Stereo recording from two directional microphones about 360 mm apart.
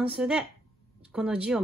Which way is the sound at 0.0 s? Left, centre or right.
Centre.